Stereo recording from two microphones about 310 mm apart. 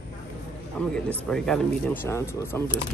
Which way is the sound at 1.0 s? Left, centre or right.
Centre.